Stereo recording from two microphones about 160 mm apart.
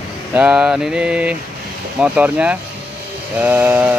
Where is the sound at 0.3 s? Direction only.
10° right (ahead or behind).